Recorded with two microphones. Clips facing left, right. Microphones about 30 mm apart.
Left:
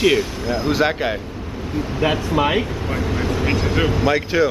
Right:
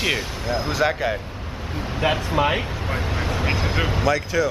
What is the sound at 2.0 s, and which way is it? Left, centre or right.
Speech, centre.